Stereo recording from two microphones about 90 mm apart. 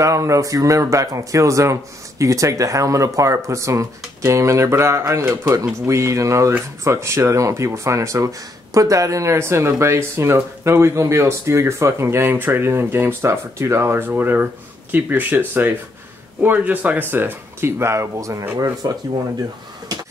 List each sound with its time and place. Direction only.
0.0 s speech: 35° right (ahead or behind)